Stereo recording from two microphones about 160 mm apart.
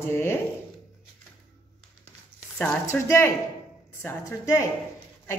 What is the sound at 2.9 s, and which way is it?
Speech, 15° left (ahead or behind).